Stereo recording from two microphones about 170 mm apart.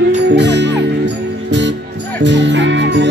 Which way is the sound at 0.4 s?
90° right.